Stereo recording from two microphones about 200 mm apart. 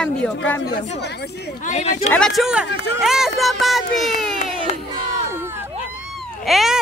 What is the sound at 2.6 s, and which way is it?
Speech, 65° left (ahead or behind).